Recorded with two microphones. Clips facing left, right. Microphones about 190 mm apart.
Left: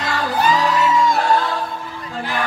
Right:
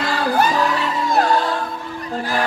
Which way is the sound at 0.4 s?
60° right (ahead or behind).